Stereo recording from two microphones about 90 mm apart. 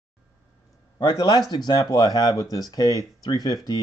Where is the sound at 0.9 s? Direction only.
50° left (ahead or behind).